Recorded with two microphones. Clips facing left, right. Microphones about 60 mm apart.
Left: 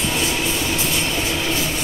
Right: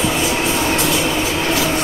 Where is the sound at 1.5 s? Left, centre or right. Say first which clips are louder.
Right 6 dB; right.